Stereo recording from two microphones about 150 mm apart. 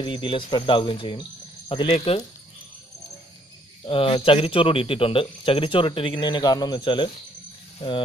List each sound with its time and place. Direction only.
0.0 s speech: 35° left (ahead or behind)
3.8 s speech: 35° left (ahead or behind)